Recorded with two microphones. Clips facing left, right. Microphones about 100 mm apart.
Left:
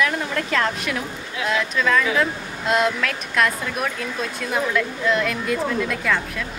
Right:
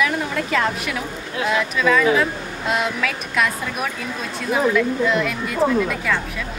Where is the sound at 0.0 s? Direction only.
5° right (ahead or behind).